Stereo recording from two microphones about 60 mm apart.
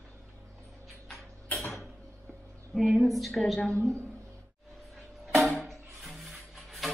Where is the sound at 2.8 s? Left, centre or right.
Centre.